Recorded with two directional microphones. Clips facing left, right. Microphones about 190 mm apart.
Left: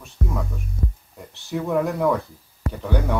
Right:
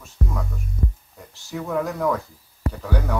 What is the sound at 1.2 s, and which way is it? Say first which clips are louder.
Speech: left 4 dB; 5° left (ahead or behind).